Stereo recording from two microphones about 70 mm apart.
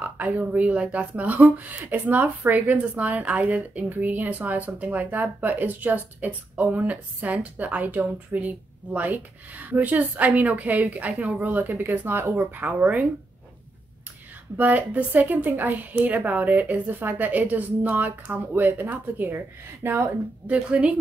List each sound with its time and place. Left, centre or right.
0.0 s a woman's voice: right
14.6 s a woman's voice: right
20.4 s a woman's voice: right